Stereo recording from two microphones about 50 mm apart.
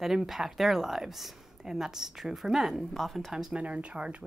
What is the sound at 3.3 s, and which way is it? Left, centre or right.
Speech, centre.